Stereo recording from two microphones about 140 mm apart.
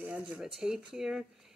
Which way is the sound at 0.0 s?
10° right (ahead or behind).